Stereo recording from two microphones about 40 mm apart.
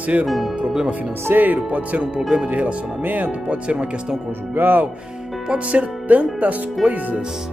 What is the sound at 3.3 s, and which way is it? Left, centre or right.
Speech, right.